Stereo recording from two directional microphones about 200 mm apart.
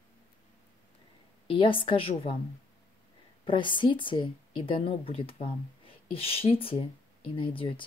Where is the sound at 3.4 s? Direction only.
25° left (ahead or behind).